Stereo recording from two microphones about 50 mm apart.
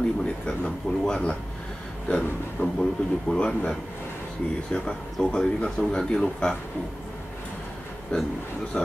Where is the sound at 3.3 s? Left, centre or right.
Centre.